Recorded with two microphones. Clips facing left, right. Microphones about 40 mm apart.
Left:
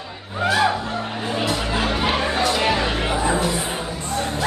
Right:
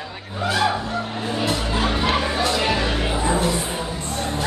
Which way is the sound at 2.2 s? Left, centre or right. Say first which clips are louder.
Left 1 dB; left.